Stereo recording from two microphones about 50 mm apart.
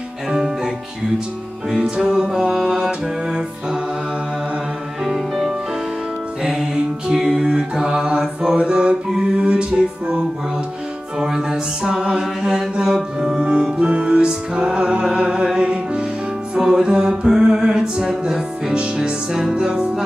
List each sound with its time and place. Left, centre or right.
2.0 s music: centre
5.0 s music: centre